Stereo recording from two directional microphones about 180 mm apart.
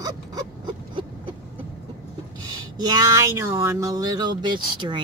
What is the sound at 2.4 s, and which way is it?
Speech, 20° right (ahead or behind).